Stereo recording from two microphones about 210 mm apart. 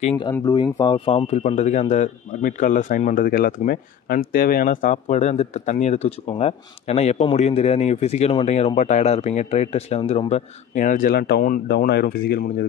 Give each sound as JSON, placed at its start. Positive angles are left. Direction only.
{"t": 0.2, "sound": "speech", "side_deg": 20}